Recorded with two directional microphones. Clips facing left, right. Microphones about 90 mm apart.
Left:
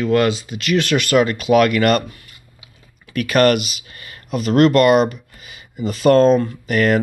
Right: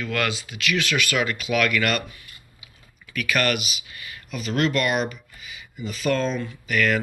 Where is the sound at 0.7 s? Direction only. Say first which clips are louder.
Left 7 dB; 50° left (ahead or behind).